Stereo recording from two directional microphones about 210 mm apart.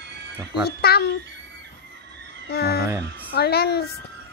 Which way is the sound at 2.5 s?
50° left (ahead or behind).